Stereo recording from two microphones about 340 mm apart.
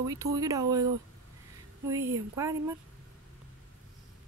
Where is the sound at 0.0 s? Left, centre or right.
Centre.